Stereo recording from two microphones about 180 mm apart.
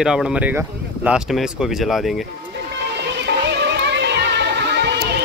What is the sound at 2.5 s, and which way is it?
Music, 70° right (ahead or behind).